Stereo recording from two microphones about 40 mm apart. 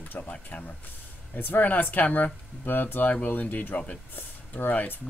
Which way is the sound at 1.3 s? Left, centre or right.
Left.